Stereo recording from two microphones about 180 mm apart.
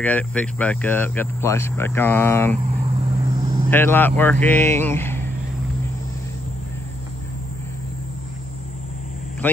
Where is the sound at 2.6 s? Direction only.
40° right (ahead or behind).